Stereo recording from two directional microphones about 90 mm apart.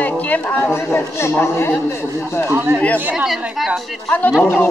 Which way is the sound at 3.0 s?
10° right (ahead or behind).